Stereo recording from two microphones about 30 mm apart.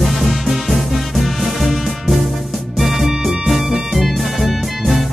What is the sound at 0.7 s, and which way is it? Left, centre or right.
Music, centre.